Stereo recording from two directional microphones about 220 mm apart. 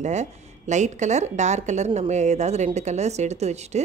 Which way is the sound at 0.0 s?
30° right (ahead or behind).